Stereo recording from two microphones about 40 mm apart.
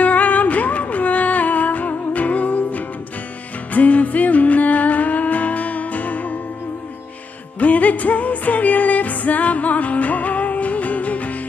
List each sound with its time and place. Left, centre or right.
0.0 s music: left
7.5 s music: left